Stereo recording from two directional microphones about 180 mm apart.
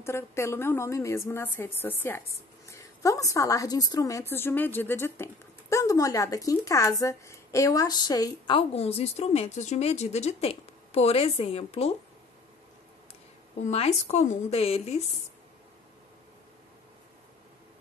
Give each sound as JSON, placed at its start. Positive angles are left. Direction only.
{"t": 0.0, "sound": "a woman's voice", "side_deg": 15}
{"t": 13.6, "sound": "a woman's voice", "side_deg": 35}